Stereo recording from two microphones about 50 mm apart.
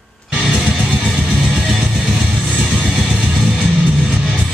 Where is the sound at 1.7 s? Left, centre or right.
Centre.